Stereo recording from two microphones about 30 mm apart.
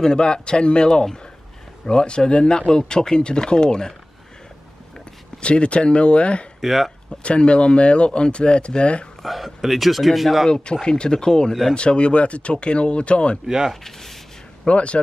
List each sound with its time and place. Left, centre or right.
0.0 s speech: left
5.4 s speech: left
6.6 s speech: centre
7.2 s speech: left
9.2 s a man's voice: centre
10.5 s speech: left
13.8 s a sound: centre
14.7 s speech: left